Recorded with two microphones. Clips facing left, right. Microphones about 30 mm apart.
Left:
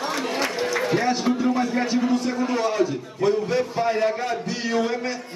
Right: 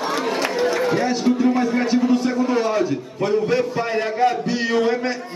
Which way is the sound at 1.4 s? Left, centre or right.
Centre.